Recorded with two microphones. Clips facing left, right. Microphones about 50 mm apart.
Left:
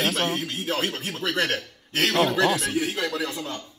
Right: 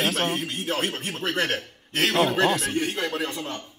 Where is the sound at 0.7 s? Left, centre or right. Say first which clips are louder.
Even; right.